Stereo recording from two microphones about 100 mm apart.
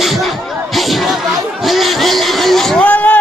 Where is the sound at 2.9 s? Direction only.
15° left (ahead or behind).